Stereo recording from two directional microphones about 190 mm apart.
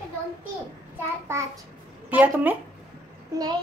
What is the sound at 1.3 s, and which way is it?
A woman's voice, 15° right (ahead or behind).